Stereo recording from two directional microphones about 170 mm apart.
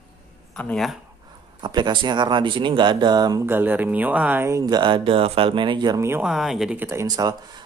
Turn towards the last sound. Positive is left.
turn(degrees=-25)  # may be behind; listen again after turning